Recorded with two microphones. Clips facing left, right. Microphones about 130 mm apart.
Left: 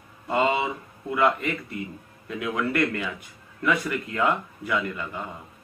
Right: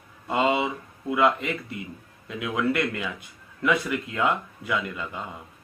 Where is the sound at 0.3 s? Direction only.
15° right (ahead or behind).